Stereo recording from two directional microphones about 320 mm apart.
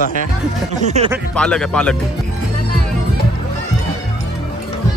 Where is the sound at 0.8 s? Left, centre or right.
Centre.